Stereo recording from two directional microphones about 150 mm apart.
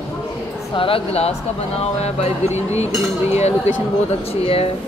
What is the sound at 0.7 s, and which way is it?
Speech, 35° left (ahead or behind).